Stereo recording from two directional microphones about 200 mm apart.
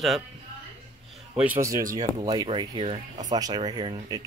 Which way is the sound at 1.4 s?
10° right (ahead or behind).